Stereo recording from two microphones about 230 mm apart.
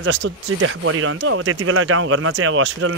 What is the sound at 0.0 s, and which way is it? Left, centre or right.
Speech, right.